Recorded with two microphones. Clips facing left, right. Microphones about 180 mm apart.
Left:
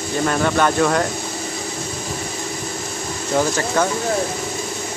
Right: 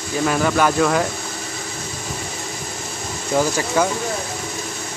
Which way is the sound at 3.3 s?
5° right (ahead or behind).